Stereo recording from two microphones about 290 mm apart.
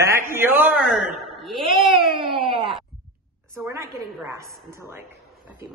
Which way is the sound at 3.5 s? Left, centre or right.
Centre.